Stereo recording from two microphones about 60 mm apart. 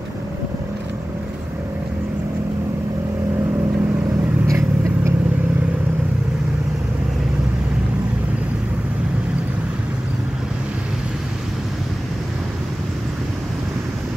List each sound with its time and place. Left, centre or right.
4.5 s biting: right